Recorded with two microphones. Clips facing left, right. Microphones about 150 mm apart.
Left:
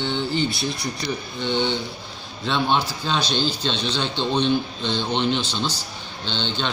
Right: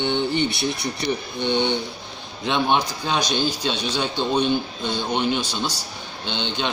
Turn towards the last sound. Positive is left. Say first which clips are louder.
# even
turn(degrees=-15)  # may be behind; listen again after turning